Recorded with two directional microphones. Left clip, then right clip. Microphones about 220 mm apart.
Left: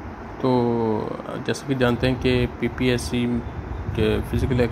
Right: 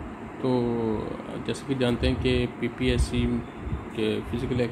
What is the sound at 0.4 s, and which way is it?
Speech, 15° left (ahead or behind).